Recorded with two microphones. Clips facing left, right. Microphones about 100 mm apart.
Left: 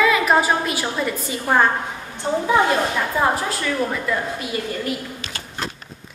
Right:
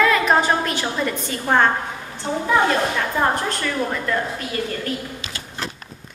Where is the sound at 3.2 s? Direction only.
5° left (ahead or behind).